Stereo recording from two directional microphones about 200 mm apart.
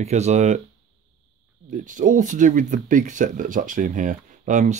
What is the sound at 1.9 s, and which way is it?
Speech, 40° right (ahead or behind).